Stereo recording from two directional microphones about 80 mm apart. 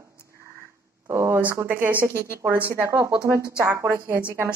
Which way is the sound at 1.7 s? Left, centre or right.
Right.